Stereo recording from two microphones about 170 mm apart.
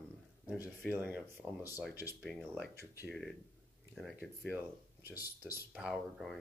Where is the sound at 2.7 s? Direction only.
15° left (ahead or behind).